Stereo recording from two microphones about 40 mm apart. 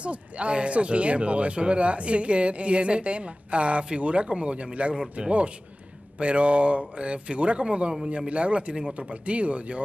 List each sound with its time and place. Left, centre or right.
0.0 s speech: right